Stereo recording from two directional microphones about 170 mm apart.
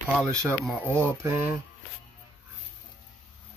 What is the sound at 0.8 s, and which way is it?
Speech, 15° right (ahead or behind).